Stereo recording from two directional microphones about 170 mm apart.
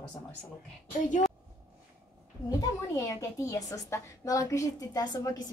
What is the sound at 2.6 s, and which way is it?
A woman's voice, 20° left (ahead or behind).